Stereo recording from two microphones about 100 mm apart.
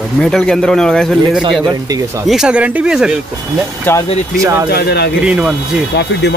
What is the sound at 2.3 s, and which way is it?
Speech, 10° right (ahead or behind).